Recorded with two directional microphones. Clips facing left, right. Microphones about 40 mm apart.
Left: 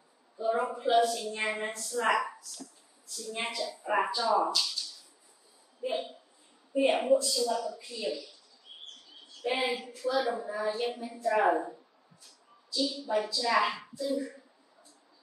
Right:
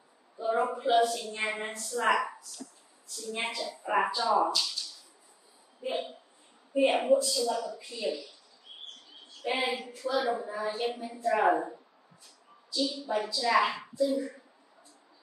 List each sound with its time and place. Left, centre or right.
0.4 s a woman's voice: centre
5.8 s a woman's voice: centre
9.4 s child singing: centre
9.8 s a woman's voice: centre
12.7 s a woman's voice: centre